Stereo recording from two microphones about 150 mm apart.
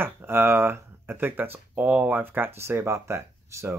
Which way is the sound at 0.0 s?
15° right (ahead or behind).